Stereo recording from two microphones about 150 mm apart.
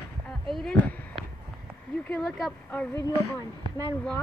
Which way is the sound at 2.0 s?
10° left (ahead or behind).